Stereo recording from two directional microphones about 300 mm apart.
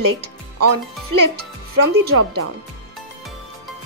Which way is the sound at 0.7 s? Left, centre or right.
Right.